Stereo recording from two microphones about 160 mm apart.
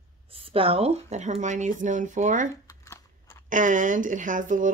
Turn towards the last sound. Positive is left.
turn(degrees=-55)  # may be behind; listen again after turning